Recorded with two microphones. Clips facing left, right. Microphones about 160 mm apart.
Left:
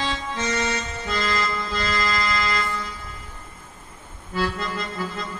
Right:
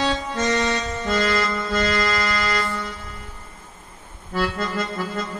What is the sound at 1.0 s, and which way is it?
Music, 45° right (ahead or behind).